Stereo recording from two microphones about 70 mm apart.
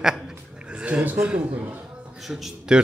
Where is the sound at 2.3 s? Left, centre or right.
Centre.